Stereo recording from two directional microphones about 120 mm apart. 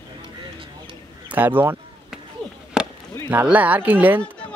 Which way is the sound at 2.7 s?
5° right (ahead or behind).